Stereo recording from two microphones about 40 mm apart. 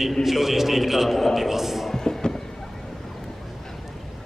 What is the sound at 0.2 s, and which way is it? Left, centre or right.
A man's voice, centre.